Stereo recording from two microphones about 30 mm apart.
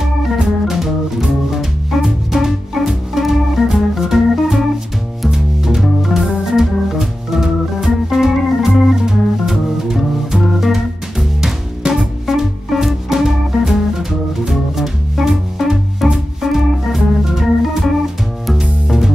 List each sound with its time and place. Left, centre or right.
0.0 s organ: centre
2.0 s music: centre
5.8 s organ: centre
9.0 s music: centre
16.0 s organ: centre
18.6 s music: centre